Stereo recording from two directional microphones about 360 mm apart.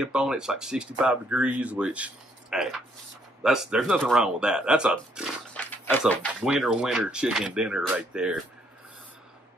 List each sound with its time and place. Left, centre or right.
0.0 s speech: centre